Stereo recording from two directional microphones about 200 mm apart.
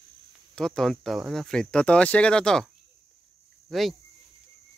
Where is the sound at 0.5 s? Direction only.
5° left (ahead or behind).